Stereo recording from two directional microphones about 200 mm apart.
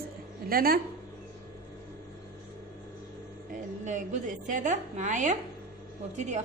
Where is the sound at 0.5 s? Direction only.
50° right (ahead or behind).